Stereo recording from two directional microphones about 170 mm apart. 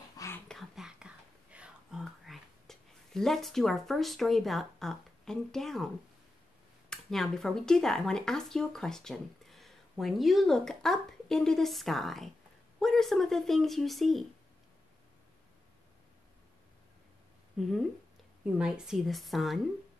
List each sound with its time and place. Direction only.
0.2 s whispering: 20° left (ahead or behind)
0.5 s whispering: centre (ahead or behind)
6.9 s speech: centre (ahead or behind)
17.6 s speech: centre (ahead or behind)